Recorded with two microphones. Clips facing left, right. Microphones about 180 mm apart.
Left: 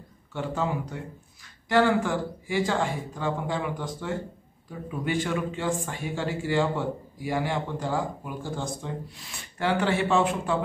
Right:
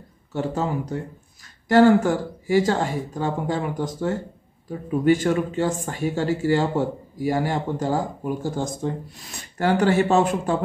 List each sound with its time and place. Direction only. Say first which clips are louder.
0.3 s speech: right 4 dB; 40° right (ahead or behind)